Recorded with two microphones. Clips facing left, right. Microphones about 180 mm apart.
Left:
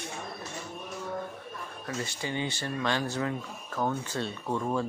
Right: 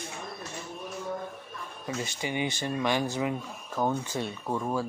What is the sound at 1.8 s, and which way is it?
Speech, 15° right (ahead or behind).